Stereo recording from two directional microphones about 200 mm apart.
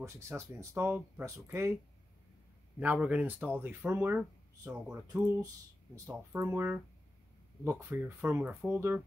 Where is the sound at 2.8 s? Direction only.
5° right (ahead or behind).